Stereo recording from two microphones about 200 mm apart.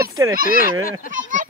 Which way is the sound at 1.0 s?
40° right (ahead or behind).